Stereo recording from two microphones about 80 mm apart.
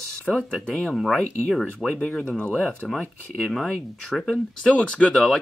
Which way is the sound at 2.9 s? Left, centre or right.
Centre.